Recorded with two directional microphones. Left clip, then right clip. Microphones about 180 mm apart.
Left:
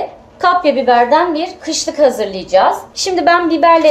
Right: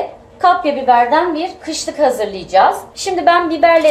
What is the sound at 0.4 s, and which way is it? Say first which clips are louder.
A woman's voice: left 1 dB; 45° left (ahead or behind).